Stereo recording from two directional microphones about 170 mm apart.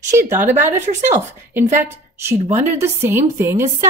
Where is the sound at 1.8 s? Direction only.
15° right (ahead or behind).